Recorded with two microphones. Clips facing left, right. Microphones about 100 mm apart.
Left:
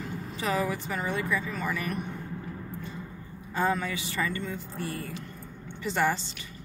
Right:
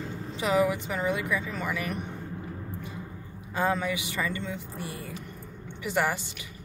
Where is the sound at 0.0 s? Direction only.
30° right (ahead or behind).